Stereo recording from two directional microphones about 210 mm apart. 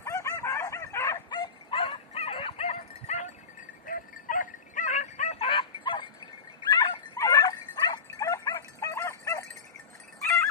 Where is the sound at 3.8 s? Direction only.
40° left (ahead or behind); by 6.0 s 25° left (ahead or behind).